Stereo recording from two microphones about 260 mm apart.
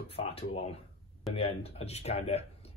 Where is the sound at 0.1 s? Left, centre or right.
Left.